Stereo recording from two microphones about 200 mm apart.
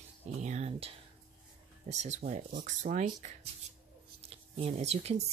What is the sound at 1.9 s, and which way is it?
Speech, 35° right (ahead or behind).